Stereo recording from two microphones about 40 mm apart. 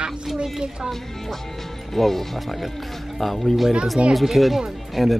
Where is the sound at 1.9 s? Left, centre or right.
Centre.